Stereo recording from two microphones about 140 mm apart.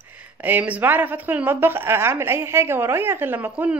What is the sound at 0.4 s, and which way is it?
A woman's voice, 10° right (ahead or behind).